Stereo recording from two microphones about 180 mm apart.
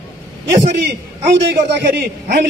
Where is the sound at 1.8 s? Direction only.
70° right (ahead or behind).